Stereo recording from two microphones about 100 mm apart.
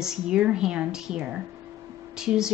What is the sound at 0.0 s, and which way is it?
Speech, 5° right (ahead or behind).